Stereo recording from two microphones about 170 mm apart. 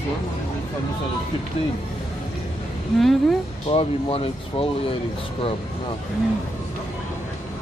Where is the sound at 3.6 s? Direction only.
35° left (ahead or behind).